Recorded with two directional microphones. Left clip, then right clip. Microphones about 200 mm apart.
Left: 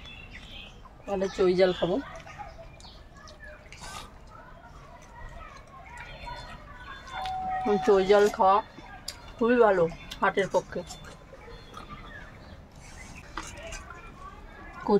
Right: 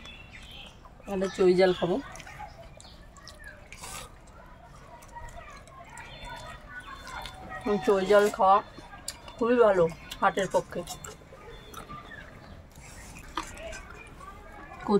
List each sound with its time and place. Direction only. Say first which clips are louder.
1.0 s speech: right 1 dB; 10° left (ahead or behind)
3.8 s a sound: left 1 dB; 15° right (ahead or behind)
7.2 s speech: left 5 dB; 10° left (ahead or behind)
14.9 s speech: left 2 dB; 10° left (ahead or behind)